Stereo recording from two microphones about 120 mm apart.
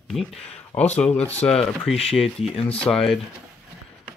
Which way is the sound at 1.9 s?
55° left (ahead or behind).